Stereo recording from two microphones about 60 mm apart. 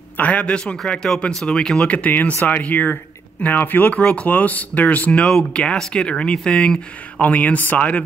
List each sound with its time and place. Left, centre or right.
0.2 s speech: left
1.9 s speech: left
5.2 s speech: centre
7.2 s speech: left